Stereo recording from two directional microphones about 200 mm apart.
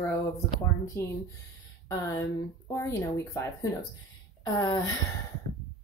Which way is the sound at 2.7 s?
15° left (ahead or behind).